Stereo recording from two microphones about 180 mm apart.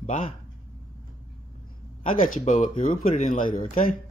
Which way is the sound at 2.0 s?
45° left (ahead or behind).